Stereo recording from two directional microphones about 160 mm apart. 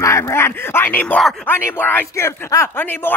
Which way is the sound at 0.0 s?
20° left (ahead or behind).